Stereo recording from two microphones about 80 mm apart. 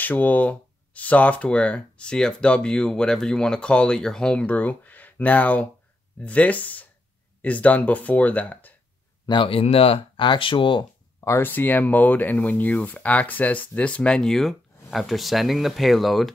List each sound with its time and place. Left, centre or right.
0.0 s speech: left
9.2 s speech: left
9.9 s speech: left
11.1 s a sound: left
11.4 s speech: left; by 16.3 s centre